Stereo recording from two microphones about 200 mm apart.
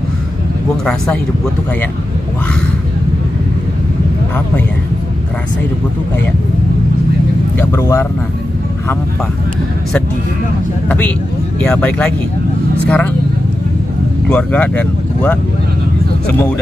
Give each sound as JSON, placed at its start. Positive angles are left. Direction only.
{"t": 7.5, "sound": "speech", "side_deg": 10}
{"t": 11.6, "sound": "speech", "side_deg": 5}
{"t": 14.3, "sound": "speech", "side_deg": 5}